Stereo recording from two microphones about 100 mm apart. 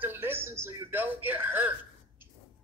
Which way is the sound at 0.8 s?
20° right (ahead or behind).